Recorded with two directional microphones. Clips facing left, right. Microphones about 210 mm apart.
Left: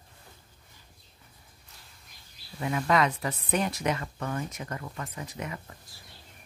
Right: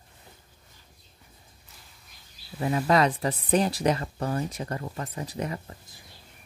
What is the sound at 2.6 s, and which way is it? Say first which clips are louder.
Speech: right 3 dB; 35° right (ahead or behind).